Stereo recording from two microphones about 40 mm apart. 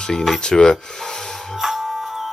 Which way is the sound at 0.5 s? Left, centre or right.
Centre.